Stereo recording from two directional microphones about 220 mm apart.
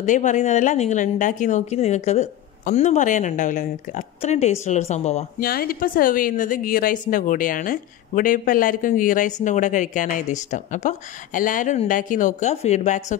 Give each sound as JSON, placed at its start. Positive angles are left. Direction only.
{"t": 0.0, "sound": "a woman's voice", "side_deg": 35}
{"t": 5.5, "sound": "a woman's voice", "side_deg": 40}